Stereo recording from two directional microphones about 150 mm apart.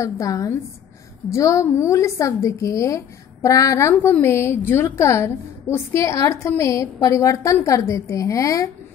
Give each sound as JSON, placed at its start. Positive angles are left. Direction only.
{"t": 0.0, "sound": "a woman's voice", "side_deg": 20}